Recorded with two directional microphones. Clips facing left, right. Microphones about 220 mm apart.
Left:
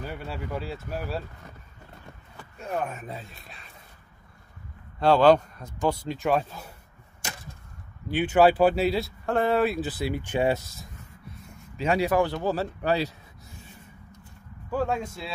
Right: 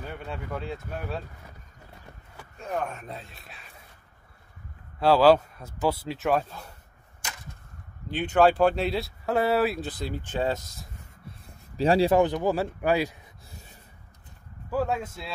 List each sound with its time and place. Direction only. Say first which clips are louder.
0.0 s speech: left 2 dB; 5° left (ahead or behind)
2.8 s speech: left 1 dB; 5° left (ahead or behind)
5.0 s speech: even; 5° right (ahead or behind)
8.1 s speech: left 1 dB; 5° left (ahead or behind)
11.4 s speech: right 4 dB; 35° right (ahead or behind); by 13.1 s 10° right (ahead or behind)
14.7 s speech: even; 5° right (ahead or behind)